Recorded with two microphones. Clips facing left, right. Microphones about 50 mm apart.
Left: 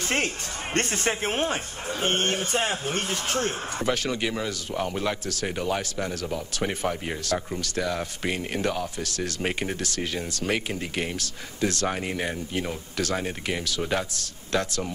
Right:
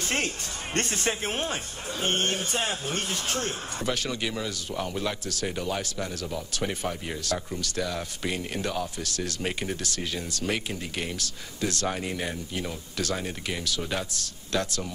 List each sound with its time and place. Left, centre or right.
0.7 s speech: left